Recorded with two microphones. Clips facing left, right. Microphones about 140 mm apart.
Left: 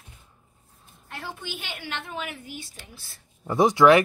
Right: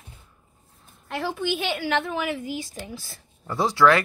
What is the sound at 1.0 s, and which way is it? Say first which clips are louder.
A woman's voice: right 10 dB; 90° right.